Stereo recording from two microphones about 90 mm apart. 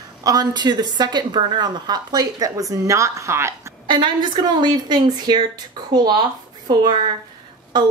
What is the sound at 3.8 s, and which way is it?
A woman's voice, 55° right (ahead or behind).